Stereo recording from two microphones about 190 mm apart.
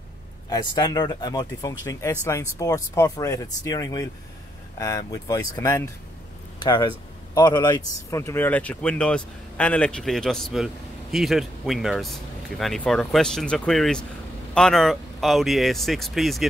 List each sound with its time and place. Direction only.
0.5 s speech: 20° left (ahead or behind); by 16.4 s centre (ahead or behind)